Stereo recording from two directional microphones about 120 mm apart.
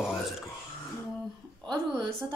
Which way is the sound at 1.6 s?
35° right (ahead or behind).